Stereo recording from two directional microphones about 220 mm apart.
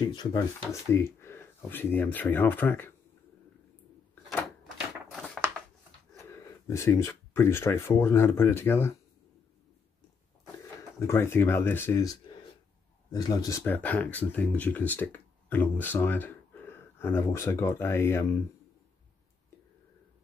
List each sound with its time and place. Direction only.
0.0 s speech: 20° left (ahead or behind)
4.1 s a sound: 10° left (ahead or behind)
6.7 s speech: 15° left (ahead or behind)
11.0 s speech: 10° left (ahead or behind)